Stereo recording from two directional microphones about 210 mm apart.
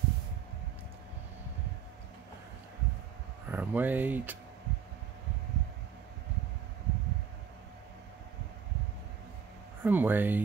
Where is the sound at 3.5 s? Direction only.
10° right (ahead or behind).